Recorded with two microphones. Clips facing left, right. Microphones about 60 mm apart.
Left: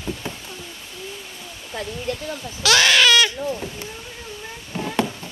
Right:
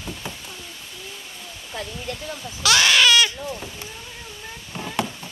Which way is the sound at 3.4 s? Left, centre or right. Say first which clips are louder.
Left 5 dB; centre.